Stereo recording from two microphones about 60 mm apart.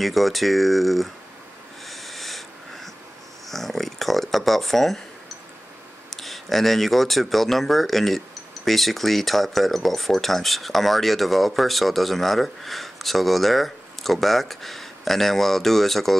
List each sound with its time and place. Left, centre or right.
0.0 s speech: centre
1.9 s wheeze: centre
3.4 s a sound: centre
6.0 s speech: centre